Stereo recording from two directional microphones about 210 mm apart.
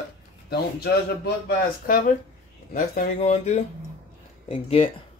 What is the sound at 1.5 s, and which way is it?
Speech, 40° left (ahead or behind).